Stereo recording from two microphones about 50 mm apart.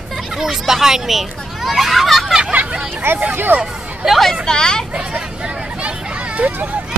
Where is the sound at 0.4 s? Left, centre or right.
Centre.